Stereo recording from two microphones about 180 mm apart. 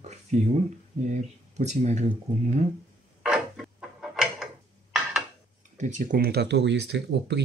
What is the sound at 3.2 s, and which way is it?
Mechanisms, 5° right (ahead or behind).